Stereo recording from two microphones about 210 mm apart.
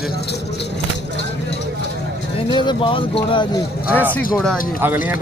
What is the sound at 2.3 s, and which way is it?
Speech, 20° left (ahead or behind).